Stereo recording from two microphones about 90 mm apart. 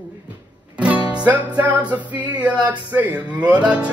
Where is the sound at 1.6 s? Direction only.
15° right (ahead or behind).